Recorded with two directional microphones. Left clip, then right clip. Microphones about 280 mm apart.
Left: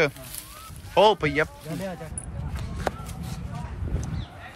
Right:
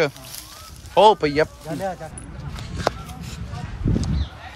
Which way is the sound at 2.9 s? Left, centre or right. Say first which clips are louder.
Right 6 dB; centre.